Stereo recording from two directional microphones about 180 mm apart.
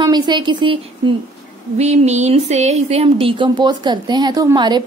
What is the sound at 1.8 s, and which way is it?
Speech, 40° right (ahead or behind).